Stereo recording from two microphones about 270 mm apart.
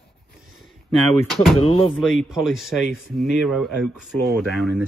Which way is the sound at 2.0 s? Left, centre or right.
Centre.